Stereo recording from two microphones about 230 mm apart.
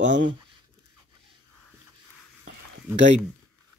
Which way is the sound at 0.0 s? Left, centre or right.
Right.